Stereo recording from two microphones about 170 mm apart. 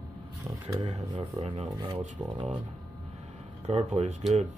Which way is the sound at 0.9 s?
40° right (ahead or behind).